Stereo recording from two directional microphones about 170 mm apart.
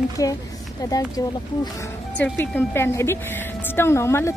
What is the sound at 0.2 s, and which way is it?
A woman's voice, 20° left (ahead or behind).